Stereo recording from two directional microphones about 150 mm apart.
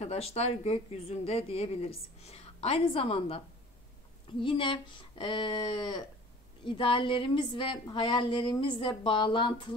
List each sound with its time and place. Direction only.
0.0 s a woman's voice: 45° left (ahead or behind)